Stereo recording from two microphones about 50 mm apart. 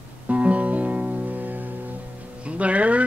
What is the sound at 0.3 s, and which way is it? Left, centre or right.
Music, right.